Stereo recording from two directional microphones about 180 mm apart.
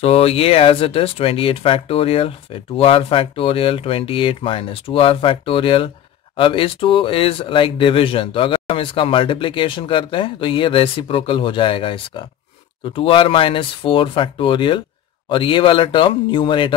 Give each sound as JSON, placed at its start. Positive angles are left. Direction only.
{"t": 0.0, "sound": "speech", "side_deg": 35}